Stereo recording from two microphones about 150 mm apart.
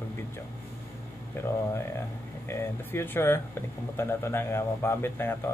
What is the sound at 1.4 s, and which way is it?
Speech, 15° left (ahead or behind).